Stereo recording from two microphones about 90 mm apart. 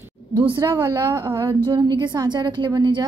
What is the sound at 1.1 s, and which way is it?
Speech, 35° right (ahead or behind).